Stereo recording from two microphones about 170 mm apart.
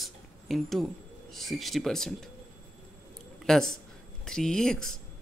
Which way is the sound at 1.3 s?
Centre (ahead or behind).